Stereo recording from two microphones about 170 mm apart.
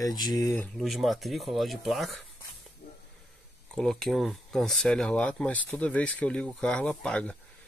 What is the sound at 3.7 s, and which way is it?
Speech, 5° left (ahead or behind).